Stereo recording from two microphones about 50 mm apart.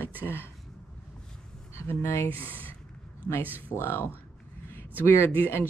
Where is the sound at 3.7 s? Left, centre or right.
Left.